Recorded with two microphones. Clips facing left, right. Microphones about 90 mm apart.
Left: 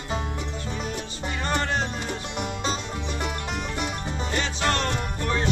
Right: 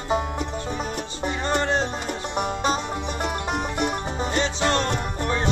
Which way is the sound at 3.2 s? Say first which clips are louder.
Right 6 dB; 50° right (ahead or behind).